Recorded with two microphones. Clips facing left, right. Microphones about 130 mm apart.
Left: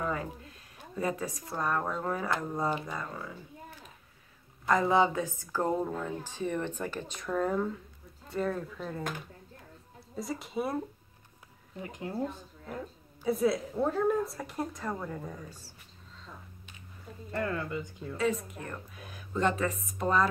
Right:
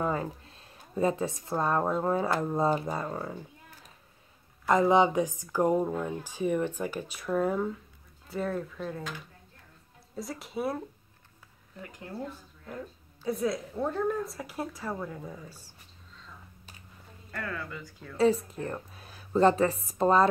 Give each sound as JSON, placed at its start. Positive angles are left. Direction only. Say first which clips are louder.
{"t": 0.0, "sound": "speech", "louder": "right 3 dB", "side_deg": -30}
{"t": 2.7, "sound": "a woman's voice", "louder": "right 5 dB", "side_deg": -35}
{"t": 4.6, "sound": "a woman's voice", "louder": "right 3 dB", "side_deg": -20}
{"t": 10.1, "sound": "a woman's voice", "louder": "left 1 dB", "side_deg": 0}
{"t": 11.8, "sound": "speech", "louder": "left 4 dB", "side_deg": 20}
{"t": 13.3, "sound": "a woman's voice", "louder": "left 2 dB", "side_deg": 5}
{"t": 17.3, "sound": "speech", "louder": "left 5 dB", "side_deg": 25}
{"t": 18.1, "sound": "a woman's voice", "louder": "right 6 dB", "side_deg": -30}